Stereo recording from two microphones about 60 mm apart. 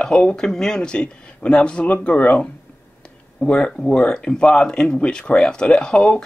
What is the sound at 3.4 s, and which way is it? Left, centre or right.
Speech, centre.